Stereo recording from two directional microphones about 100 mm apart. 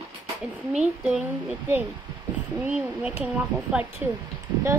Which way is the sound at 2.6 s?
15° right (ahead or behind).